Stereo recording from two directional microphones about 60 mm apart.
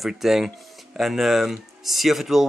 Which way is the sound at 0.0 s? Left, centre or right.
Centre.